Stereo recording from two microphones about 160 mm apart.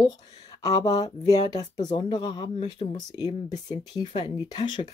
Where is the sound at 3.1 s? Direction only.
25° left (ahead or behind).